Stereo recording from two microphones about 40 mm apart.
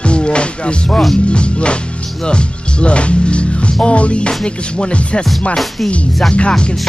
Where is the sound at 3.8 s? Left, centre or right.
Left.